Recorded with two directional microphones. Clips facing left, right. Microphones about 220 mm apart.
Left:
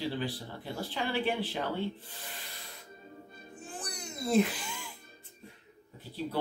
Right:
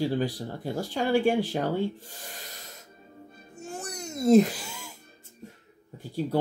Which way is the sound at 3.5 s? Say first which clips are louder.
Right 6 dB; 45° right (ahead or behind).